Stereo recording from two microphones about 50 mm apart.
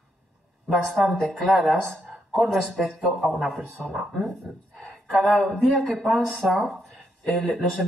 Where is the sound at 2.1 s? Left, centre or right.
Centre.